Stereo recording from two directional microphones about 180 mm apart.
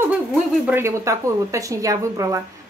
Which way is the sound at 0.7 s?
15° right (ahead or behind).